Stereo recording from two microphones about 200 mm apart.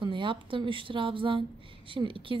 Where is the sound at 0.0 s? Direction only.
25° right (ahead or behind).